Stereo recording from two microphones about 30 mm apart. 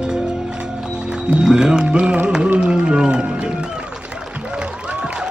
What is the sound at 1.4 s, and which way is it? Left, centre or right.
Music, right.